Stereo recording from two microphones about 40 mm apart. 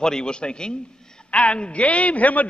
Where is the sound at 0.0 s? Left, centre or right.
Centre.